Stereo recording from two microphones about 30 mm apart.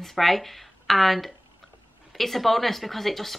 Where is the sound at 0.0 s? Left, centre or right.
Centre.